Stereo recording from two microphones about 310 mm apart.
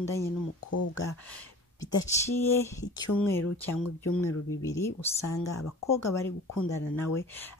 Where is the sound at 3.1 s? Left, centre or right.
Centre.